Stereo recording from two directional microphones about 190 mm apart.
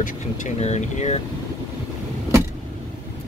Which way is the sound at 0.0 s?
40° left (ahead or behind).